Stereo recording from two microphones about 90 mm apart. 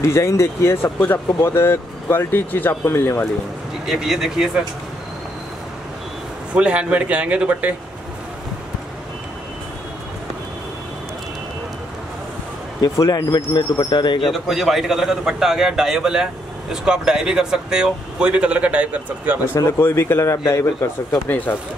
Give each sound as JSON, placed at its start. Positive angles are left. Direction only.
{"t": 0.0, "sound": "speech", "side_deg": 35}
{"t": 3.8, "sound": "a man's voice", "side_deg": -5}
{"t": 6.5, "sound": "speech", "side_deg": -15}
{"t": 12.8, "sound": "speech", "side_deg": 40}
{"t": 13.8, "sound": "speech", "side_deg": 60}
{"t": 14.3, "sound": "a man's voice", "side_deg": 0}
{"t": 19.5, "sound": "a man's voice", "side_deg": 30}
{"t": 21.5, "sound": "speech", "side_deg": 20}